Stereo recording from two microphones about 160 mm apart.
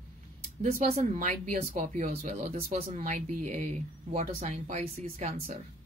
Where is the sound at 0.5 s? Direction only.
55° right (ahead or behind).